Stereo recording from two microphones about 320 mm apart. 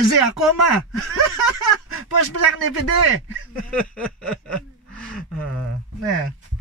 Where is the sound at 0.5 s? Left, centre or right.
Left.